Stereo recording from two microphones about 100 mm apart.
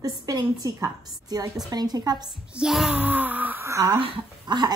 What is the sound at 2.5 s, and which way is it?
Speech, 5° right (ahead or behind).